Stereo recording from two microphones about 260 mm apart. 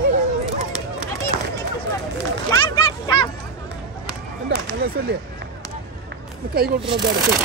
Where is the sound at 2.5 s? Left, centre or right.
Centre.